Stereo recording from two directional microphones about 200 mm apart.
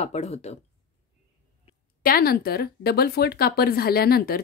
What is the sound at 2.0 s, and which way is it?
Speech, 45° left (ahead or behind).